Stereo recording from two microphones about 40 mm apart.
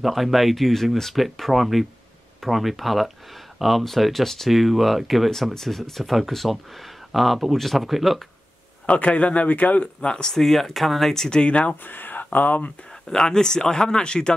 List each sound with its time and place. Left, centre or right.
0.0 s speech: centre
8.8 s speech: left
10.0 s speech: left
10.3 s speech: centre
11.4 s speech: left
11.8 s speech: left
13.1 s speech: centre